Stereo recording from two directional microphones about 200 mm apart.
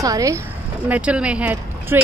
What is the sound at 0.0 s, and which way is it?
Speech, 15° right (ahead or behind).